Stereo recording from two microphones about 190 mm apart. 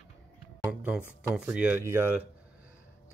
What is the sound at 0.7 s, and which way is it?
Speech, 5° right (ahead or behind).